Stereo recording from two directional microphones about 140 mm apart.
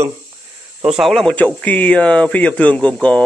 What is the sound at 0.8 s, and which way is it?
Speech, centre (ahead or behind).